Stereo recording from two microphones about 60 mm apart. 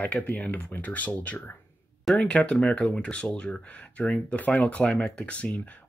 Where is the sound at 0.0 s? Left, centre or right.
Left.